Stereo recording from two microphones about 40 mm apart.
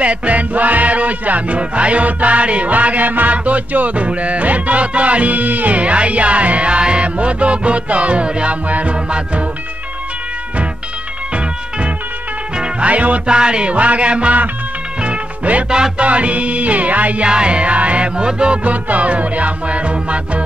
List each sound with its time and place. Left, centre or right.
0.0 s music: right
12.5 s music: right
12.8 s music: right
13.3 s music: right
15.7 s music: right
16.1 s music: right
17.3 s music: right
18.6 s music: right